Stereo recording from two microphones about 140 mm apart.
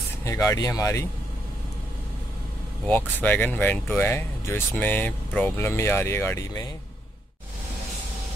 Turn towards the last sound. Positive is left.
turn(degrees=25)  # may be behind; listen again after turning